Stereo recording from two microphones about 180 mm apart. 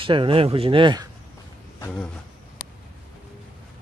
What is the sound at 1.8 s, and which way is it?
Speech, 10° left (ahead or behind).